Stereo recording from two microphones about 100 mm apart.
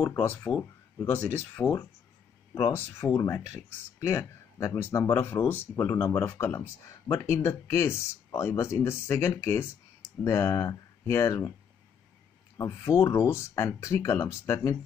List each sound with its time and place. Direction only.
0.2 s speech: 20° left (ahead or behind)
3.2 s speech: 35° left (ahead or behind)
12.5 s speech: 35° left (ahead or behind)